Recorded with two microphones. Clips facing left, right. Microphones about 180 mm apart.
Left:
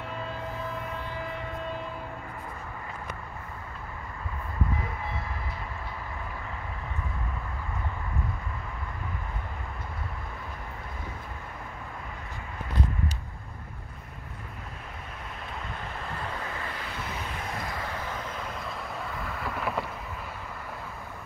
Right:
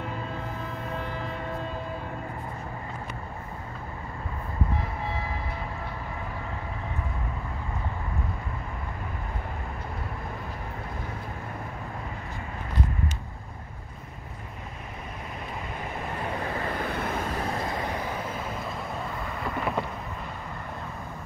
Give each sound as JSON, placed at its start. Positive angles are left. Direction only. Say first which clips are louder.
{"t": 16.4, "sound": "vehicle", "louder": "right 6 dB", "side_deg": -40}
{"t": 16.8, "sound": "vehicle", "louder": "right 7 dB", "side_deg": -55}
{"t": 17.7, "sound": "vehicle", "louder": "right 4 dB", "side_deg": -20}